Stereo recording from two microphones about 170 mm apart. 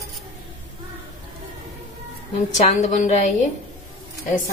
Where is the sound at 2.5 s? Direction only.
45° left (ahead or behind).